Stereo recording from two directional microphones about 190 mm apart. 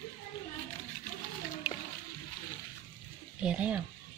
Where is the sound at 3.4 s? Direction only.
5° right (ahead or behind).